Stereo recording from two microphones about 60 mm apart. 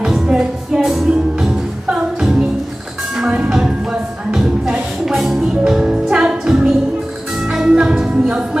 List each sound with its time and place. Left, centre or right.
0.0 s music: centre